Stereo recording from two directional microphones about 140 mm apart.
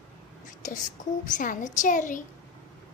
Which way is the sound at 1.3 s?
70° left (ahead or behind).